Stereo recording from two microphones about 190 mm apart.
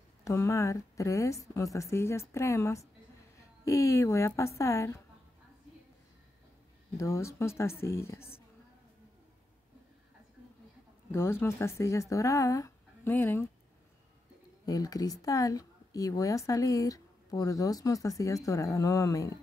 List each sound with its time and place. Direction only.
0.2 s a woman's voice: 15° left (ahead or behind)
7.0 s speech: 15° left (ahead or behind)
11.1 s speech: 15° left (ahead or behind)
14.7 s speech: 20° left (ahead or behind)